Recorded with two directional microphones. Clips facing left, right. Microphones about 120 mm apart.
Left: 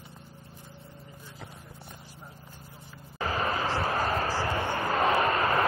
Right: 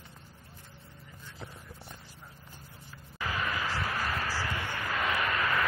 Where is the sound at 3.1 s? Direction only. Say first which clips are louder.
Left 5 dB; 40° left (ahead or behind).